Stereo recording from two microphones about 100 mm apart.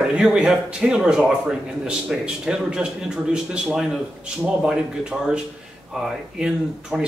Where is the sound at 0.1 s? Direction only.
10° right (ahead or behind).